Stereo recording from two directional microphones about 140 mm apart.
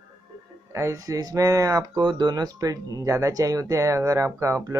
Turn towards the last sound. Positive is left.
turn(degrees=-20)  # may be behind; listen again after turning